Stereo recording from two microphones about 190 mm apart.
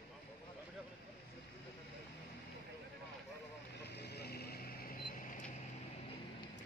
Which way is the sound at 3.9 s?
60° left (ahead or behind).